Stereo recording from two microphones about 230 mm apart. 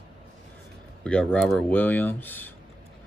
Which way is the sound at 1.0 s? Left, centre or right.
Centre.